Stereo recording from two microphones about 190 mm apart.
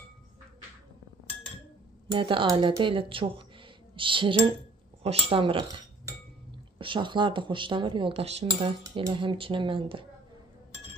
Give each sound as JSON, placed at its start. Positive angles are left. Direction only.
{"t": 2.0, "sound": "speech", "side_deg": -25}
{"t": 3.9, "sound": "music", "side_deg": -25}
{"t": 5.0, "sound": "speech", "side_deg": -30}
{"t": 6.8, "sound": "speech", "side_deg": -25}